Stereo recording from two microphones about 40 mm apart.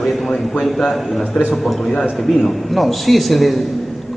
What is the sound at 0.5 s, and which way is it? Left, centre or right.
Speech, centre.